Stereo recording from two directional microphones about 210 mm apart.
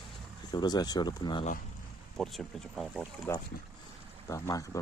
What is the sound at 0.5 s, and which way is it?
Speech, 20° left (ahead or behind).